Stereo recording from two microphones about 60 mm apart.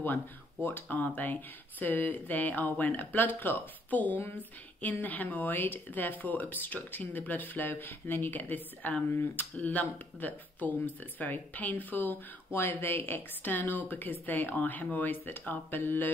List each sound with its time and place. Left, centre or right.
0.7 s speech: left